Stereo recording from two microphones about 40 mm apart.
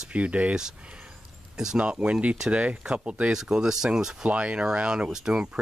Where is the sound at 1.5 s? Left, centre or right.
Centre.